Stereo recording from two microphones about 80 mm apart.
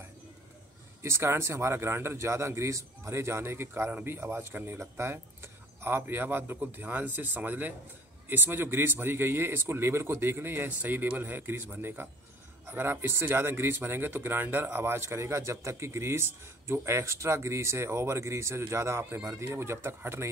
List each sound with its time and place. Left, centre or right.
1.0 s speech: right